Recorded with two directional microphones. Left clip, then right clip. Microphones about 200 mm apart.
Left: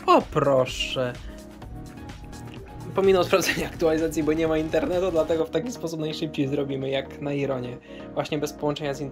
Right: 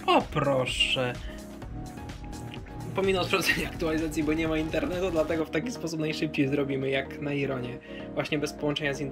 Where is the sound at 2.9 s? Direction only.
15° left (ahead or behind).